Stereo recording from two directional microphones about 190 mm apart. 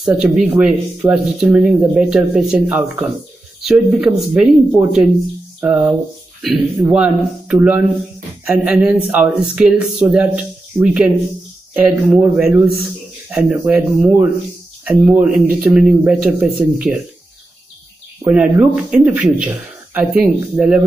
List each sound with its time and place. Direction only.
0.0 s speech: 5° right (ahead or behind)
5.6 s a sound: 5° right (ahead or behind)
6.4 s speech: centre (ahead or behind)
18.2 s speech: 5° right (ahead or behind)